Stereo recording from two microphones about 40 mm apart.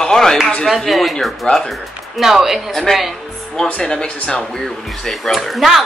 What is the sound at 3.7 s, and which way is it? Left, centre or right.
Speech, left.